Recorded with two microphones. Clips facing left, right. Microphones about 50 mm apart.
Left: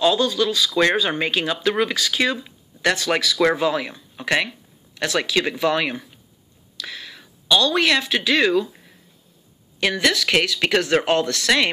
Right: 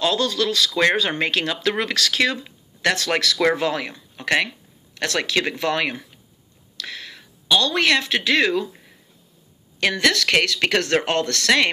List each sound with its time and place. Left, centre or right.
0.0 s speech: right
2.3 s speech: right
9.8 s speech: right